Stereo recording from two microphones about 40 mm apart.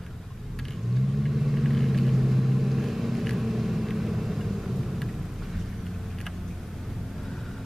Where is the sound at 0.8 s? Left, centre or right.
Centre.